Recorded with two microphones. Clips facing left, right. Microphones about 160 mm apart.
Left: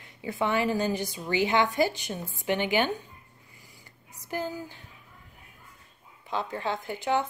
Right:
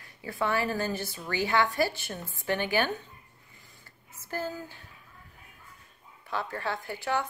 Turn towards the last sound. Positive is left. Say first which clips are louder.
# left 3 dB
turn(degrees=20)  # may be behind; listen again after turning